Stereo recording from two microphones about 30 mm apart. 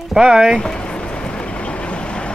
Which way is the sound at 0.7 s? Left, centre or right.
Left.